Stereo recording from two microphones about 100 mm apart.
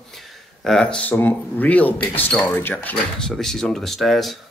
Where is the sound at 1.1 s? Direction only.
20° left (ahead or behind).